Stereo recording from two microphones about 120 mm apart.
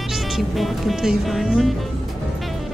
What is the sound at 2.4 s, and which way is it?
Music, centre (ahead or behind).